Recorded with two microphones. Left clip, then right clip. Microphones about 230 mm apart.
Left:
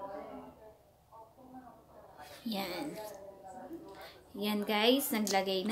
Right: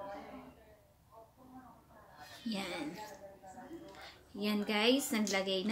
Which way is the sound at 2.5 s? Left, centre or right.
Centre.